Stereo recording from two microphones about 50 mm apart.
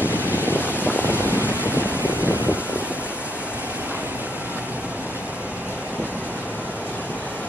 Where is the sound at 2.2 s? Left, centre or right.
Right.